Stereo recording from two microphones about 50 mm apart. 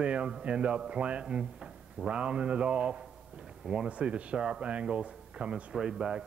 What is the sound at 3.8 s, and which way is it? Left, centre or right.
Speech, right.